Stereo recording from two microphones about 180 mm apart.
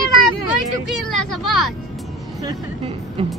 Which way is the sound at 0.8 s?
Centre (ahead or behind).